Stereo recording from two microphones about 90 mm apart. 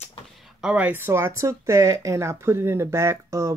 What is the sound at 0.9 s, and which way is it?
Speech, 25° right (ahead or behind).